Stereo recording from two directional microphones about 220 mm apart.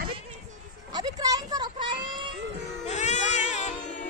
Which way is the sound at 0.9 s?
15° right (ahead or behind).